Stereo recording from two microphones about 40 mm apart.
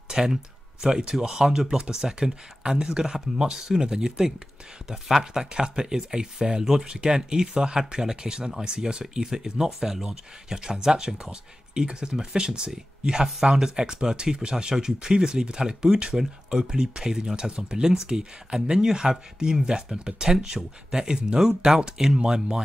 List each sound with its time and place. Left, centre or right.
0.1 s speech: centre